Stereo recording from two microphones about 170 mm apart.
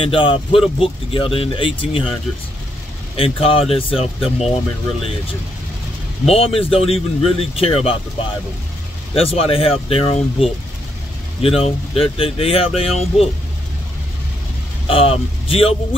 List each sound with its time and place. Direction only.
0.0 s speech: 30° left (ahead or behind)
3.2 s speech: 35° left (ahead or behind)
6.2 s speech: 35° left (ahead or behind)
14.9 s speech: 35° left (ahead or behind)